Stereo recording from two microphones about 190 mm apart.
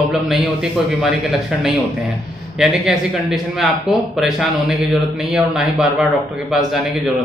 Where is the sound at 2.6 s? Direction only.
5° right (ahead or behind).